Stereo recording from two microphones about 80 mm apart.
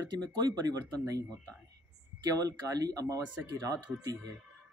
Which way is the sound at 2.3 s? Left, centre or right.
Right.